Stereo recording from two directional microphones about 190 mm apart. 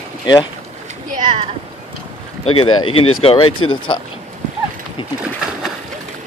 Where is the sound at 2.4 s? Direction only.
30° left (ahead or behind).